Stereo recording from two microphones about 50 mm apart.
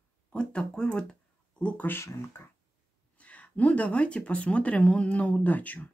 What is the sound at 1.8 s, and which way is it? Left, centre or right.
Speech, left.